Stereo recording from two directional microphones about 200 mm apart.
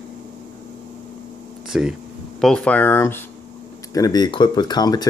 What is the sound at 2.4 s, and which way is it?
Speech, 5° left (ahead or behind).